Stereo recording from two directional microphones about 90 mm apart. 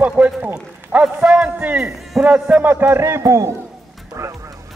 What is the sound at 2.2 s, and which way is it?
A man's voice, 15° right (ahead or behind).